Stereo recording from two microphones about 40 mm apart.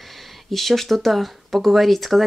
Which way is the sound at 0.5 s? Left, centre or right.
Centre.